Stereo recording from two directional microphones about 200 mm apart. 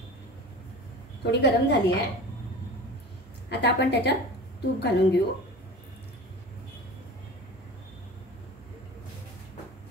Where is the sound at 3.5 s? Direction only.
55° left (ahead or behind).